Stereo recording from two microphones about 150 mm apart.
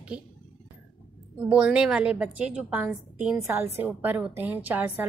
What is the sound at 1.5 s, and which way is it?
A woman's voice, 5° right (ahead or behind).